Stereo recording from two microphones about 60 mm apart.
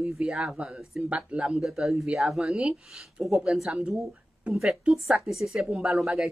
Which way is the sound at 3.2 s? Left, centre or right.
Centre.